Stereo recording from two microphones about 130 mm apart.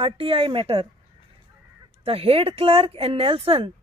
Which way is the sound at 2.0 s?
50° right (ahead or behind).